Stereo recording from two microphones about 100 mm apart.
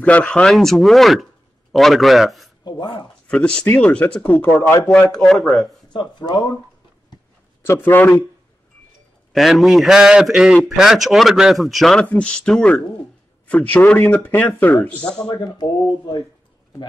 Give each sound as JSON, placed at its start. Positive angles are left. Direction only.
{"t": 0.0, "sound": "a man's voice", "side_deg": 10}
{"t": 2.6, "sound": "speech", "side_deg": 50}
{"t": 3.3, "sound": "a man's voice", "side_deg": 10}
{"t": 5.1, "sound": "a man's voice", "side_deg": 0}
{"t": 5.9, "sound": "speech", "side_deg": 45}
{"t": 7.6, "sound": "a man's voice", "side_deg": 25}
{"t": 9.3, "sound": "a man's voice", "side_deg": 0}
{"t": 15.4, "sound": "speech", "side_deg": 45}